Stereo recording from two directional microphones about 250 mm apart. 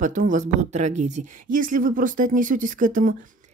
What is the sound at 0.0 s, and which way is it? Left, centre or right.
Speech, right.